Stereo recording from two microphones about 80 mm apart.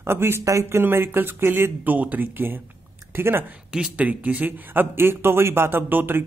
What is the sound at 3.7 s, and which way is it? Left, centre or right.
Speech, centre.